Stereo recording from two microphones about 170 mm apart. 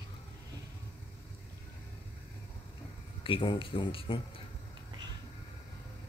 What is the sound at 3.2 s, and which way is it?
Speech, 30° left (ahead or behind).